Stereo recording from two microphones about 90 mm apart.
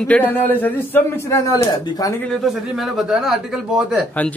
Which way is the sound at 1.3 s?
40° left (ahead or behind).